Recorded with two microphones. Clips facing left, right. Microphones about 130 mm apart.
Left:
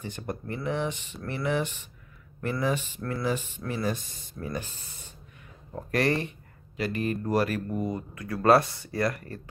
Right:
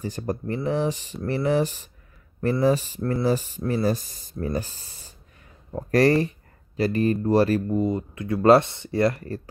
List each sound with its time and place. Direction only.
0.0 s speech: 40° right (ahead or behind)